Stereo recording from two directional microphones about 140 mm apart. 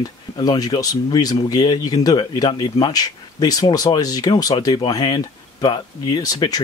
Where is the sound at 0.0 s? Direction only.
30° left (ahead or behind).